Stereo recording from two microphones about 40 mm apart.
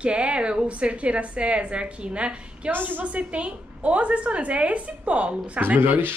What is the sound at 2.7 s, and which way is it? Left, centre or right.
Speech, right.